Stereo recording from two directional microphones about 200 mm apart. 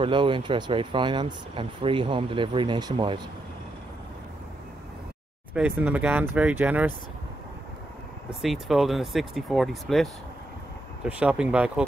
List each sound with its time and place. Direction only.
0.0 s speech: 25° right (ahead or behind)
5.5 s speech: 5° right (ahead or behind)
8.4 s speech: centre (ahead or behind)
11.1 s speech: 5° right (ahead or behind)